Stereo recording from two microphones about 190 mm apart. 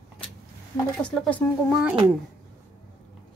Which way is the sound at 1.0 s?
5° left (ahead or behind).